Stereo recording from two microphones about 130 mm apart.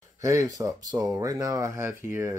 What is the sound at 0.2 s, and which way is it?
Speech, 25° right (ahead or behind).